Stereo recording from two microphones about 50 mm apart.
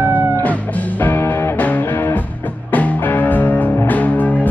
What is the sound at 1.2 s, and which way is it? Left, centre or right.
Music, left.